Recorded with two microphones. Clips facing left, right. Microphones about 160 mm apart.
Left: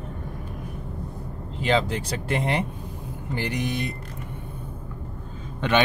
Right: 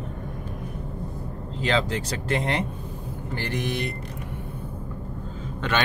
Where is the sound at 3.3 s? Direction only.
15° left (ahead or behind).